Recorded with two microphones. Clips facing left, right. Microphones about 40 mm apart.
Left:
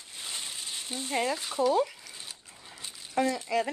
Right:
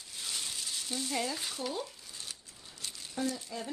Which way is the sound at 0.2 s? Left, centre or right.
Left.